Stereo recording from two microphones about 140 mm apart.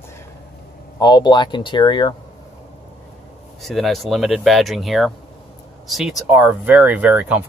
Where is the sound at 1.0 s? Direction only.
30° left (ahead or behind).